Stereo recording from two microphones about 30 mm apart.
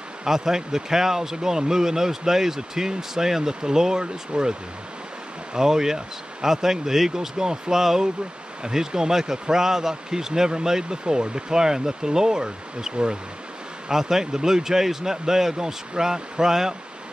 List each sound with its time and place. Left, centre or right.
0.2 s speech: centre
5.5 s speech: centre
12.9 s speech: right
13.8 s speech: centre